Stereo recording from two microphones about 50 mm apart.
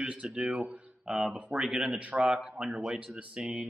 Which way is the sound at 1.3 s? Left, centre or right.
Centre.